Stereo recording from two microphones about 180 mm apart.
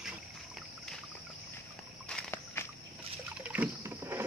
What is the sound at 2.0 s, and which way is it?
Walk, 10° left (ahead or behind).